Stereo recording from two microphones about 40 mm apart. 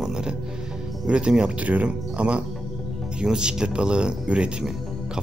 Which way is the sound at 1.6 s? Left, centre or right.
Right.